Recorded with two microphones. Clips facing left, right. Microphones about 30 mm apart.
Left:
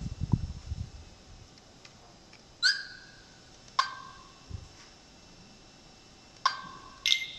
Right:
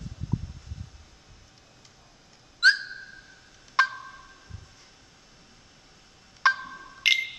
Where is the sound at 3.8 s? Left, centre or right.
Centre.